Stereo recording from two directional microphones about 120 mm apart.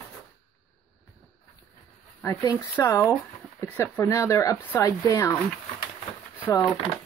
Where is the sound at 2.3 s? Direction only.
30° left (ahead or behind).